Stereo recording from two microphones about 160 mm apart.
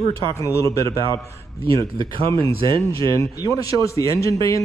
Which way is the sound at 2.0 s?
35° right (ahead or behind).